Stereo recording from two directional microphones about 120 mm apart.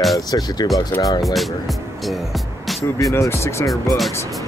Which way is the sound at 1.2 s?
Centre (ahead or behind).